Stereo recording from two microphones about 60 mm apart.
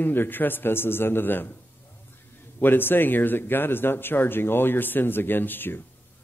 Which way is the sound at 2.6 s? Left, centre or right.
Left.